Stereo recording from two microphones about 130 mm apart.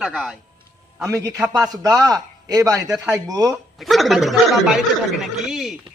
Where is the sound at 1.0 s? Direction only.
25° right (ahead or behind).